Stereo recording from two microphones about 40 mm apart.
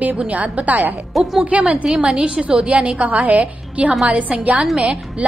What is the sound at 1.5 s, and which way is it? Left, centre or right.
A woman's voice, right.